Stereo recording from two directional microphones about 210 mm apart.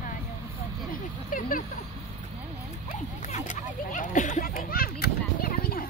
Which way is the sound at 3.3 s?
35° left (ahead or behind).